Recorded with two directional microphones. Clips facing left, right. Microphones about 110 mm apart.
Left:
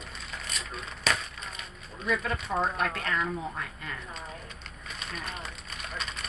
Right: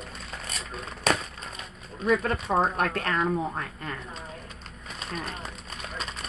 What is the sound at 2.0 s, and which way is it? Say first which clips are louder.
Speech: right 5 dB; 50° right (ahead or behind).